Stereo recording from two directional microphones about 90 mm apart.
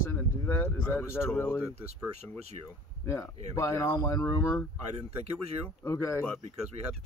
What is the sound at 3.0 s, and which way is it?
Speech, 30° left (ahead or behind).